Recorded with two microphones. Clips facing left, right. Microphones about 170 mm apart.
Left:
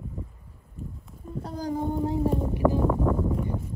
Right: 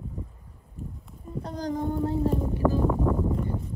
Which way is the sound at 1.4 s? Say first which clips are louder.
Even; 5° left (ahead or behind).